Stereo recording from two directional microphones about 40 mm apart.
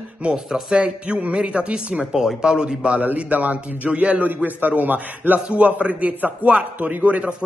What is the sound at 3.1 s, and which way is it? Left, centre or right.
A man's voice, right.